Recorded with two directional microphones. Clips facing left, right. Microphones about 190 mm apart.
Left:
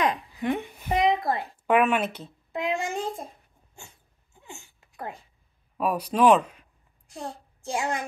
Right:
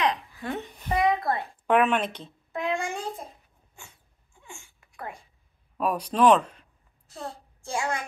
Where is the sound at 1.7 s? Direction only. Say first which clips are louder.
Even; 10° left (ahead or behind).